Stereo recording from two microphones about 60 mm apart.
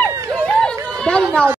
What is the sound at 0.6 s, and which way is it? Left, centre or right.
Chatter, centre.